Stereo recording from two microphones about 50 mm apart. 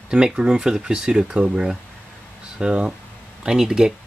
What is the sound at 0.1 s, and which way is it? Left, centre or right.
Speech, centre.